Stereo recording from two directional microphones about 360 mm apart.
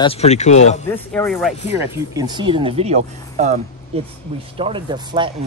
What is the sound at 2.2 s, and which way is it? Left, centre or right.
Speech, centre.